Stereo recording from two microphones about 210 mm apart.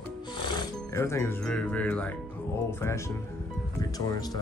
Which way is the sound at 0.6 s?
15° left (ahead or behind).